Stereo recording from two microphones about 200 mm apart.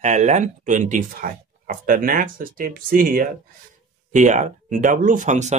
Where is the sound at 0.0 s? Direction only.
35° right (ahead or behind).